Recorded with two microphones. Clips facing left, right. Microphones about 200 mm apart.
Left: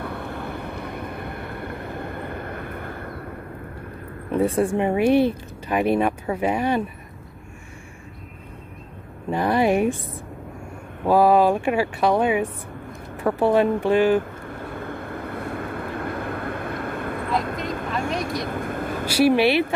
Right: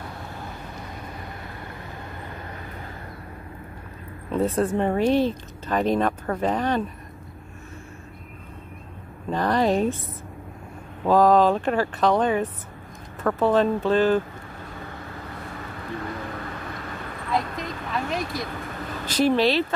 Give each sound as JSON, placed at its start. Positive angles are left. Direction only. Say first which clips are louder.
{"t": 0.0, "sound": "vehicle", "louder": "left 6 dB", "side_deg": 60}
{"t": 4.3, "sound": "speech", "louder": "left 2 dB", "side_deg": 10}
{"t": 9.3, "sound": "speech", "louder": "left 2 dB", "side_deg": 10}
{"t": 11.1, "sound": "speech", "louder": "left 1 dB", "side_deg": 10}
{"t": 14.5, "sound": "vehicle", "louder": "left 6 dB", "side_deg": 55}
{"t": 19.0, "sound": "speech", "louder": "left 3 dB", "side_deg": 10}